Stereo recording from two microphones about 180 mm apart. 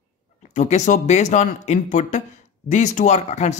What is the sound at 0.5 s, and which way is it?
Speech, 40° left (ahead or behind).